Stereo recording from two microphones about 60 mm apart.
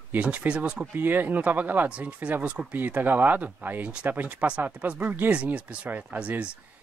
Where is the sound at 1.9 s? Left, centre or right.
Right.